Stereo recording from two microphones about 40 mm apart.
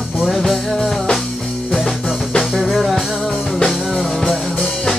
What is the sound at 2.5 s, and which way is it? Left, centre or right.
Music, centre.